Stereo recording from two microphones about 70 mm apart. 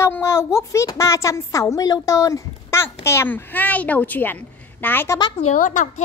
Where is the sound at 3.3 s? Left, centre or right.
Left.